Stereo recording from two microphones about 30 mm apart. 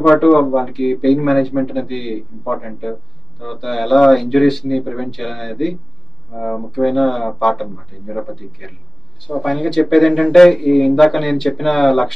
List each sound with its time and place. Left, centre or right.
0.1 s speech: centre
6.3 s speech: left
6.7 s speech: centre